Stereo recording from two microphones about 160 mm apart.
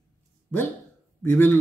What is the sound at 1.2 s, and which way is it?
Speech, 15° left (ahead or behind).